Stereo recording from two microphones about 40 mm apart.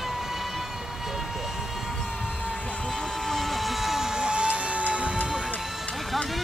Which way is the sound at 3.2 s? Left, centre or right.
Centre.